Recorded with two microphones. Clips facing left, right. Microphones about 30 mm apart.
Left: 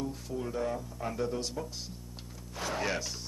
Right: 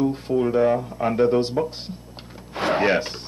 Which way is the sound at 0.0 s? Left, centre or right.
Right.